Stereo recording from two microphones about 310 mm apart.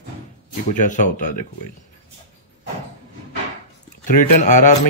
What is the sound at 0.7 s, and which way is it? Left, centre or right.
Speech, left.